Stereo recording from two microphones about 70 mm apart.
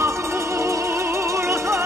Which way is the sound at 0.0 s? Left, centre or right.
Right.